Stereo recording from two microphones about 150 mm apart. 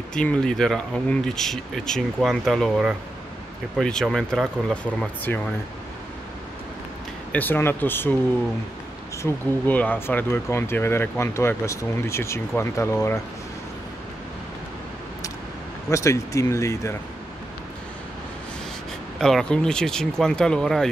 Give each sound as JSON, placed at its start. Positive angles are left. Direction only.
{"t": 0.1, "sound": "speech", "side_deg": 5}
{"t": 7.3, "sound": "speech", "side_deg": 15}
{"t": 9.2, "sound": "speech", "side_deg": 10}
{"t": 15.9, "sound": "speech", "side_deg": 20}
{"t": 19.1, "sound": "speech", "side_deg": 5}